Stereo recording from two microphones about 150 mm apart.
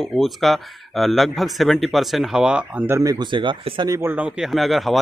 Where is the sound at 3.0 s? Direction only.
25° right (ahead or behind).